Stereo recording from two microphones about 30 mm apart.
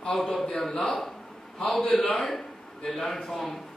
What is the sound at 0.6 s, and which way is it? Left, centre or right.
Speech, centre.